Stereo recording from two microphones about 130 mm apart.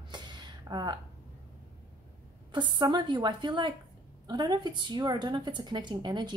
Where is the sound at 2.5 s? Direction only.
35° right (ahead or behind).